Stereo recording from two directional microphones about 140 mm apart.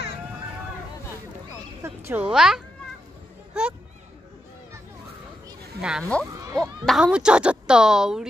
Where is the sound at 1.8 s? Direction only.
15° right (ahead or behind).